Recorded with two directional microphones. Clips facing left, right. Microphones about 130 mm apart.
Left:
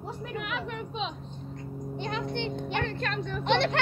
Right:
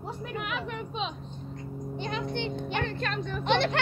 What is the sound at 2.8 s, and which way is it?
Speech, 15° right (ahead or behind).